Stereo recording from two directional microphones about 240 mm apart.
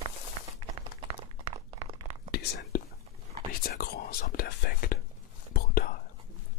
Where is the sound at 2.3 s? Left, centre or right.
Left.